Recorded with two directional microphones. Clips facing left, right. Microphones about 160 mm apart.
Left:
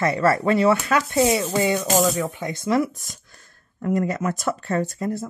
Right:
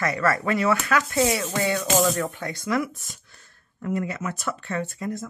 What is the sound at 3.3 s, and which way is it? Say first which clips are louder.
Speech: left 3 dB; 45° left (ahead or behind).